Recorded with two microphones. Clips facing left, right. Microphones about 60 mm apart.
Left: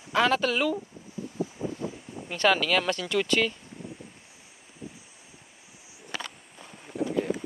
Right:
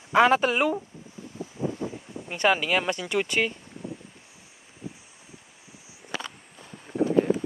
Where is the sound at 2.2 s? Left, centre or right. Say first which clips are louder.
Even; centre.